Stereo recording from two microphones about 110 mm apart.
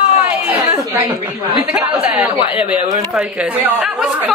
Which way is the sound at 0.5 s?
15° right (ahead or behind).